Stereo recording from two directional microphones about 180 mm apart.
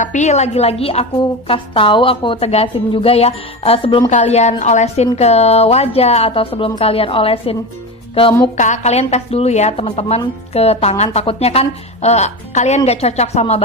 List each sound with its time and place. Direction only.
0.0 s a woman's voice: 40° left (ahead or behind)
8.1 s music: 30° left (ahead or behind)
8.5 s a woman's voice: 40° left (ahead or behind)